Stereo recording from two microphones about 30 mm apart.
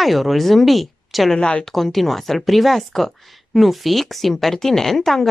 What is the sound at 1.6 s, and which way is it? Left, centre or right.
Speech, centre.